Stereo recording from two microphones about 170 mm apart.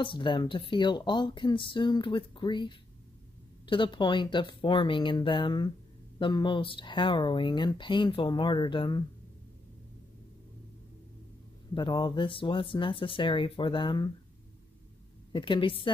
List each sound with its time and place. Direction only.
0.0 s speech: 30° left (ahead or behind)
11.7 s speech: 25° left (ahead or behind)
15.3 s speech: 30° left (ahead or behind)